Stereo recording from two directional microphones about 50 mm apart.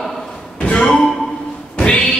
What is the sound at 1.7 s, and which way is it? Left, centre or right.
Music, centre.